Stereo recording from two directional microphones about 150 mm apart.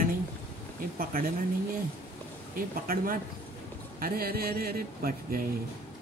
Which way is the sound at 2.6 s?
70° right (ahead or behind).